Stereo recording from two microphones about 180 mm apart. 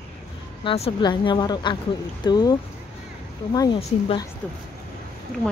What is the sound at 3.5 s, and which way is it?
Speech, 25° left (ahead or behind).